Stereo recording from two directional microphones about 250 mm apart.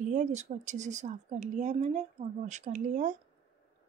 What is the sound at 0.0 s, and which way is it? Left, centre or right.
A woman's voice, right.